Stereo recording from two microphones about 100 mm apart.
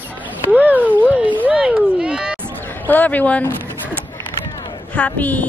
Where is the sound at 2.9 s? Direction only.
15° left (ahead or behind).